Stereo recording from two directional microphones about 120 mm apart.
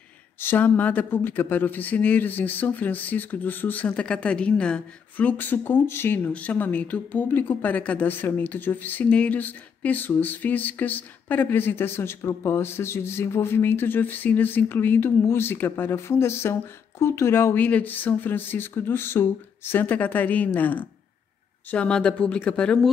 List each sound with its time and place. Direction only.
0.4 s speech: 15° left (ahead or behind)